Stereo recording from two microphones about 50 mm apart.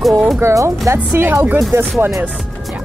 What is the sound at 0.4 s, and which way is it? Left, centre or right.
Speech, right.